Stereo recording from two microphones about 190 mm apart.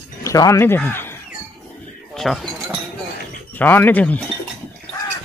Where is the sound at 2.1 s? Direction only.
Centre (ahead or behind).